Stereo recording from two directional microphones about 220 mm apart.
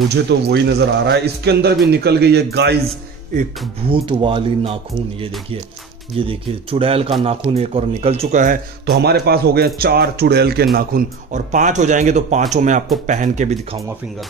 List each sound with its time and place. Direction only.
0.1 s a man's voice: 50° right (ahead or behind)
3.9 s a man's voice: 25° right (ahead or behind)
6.1 s a man's voice: 25° right (ahead or behind)